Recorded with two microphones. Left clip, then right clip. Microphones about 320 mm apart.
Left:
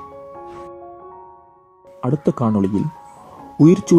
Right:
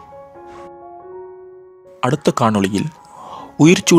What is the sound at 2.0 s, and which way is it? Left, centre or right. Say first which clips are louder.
Speech: right 5 dB; right.